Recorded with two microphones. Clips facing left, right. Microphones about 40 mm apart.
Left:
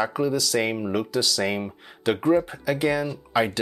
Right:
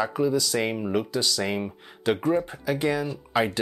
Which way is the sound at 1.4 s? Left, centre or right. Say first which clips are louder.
Left 2 dB; centre.